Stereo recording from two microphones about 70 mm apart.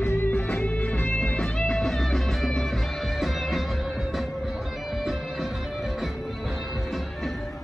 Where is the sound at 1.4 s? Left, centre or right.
Centre.